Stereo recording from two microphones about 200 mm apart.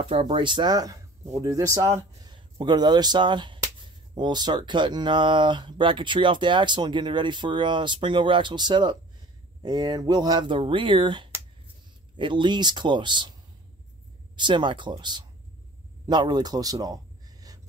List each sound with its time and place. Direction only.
0.0 s speech: 25° right (ahead or behind)
14.3 s a man's voice: 25° right (ahead or behind)